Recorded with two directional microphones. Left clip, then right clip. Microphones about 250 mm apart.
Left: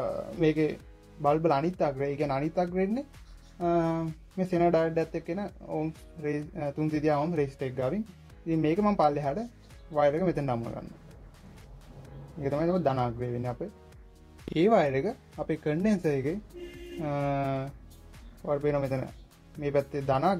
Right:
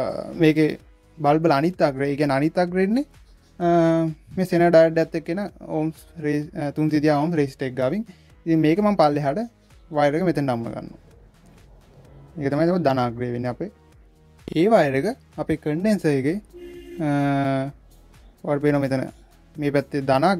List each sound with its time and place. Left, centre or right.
0.0 s speech: right
4.4 s speech: right
12.4 s speech: right